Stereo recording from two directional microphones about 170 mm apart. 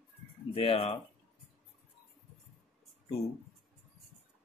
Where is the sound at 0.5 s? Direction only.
35° left (ahead or behind).